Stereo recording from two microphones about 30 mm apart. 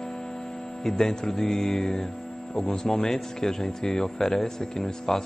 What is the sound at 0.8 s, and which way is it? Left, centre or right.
A man's voice, centre.